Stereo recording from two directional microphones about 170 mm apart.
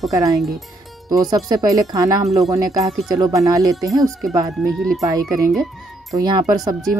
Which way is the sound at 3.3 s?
20° right (ahead or behind).